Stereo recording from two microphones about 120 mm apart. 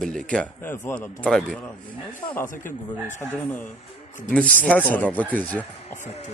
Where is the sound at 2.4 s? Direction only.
90° left.